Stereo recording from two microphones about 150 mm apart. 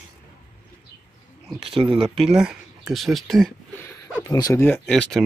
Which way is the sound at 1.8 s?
35° right (ahead or behind).